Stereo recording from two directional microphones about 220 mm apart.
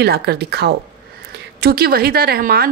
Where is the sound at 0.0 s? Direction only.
45° right (ahead or behind).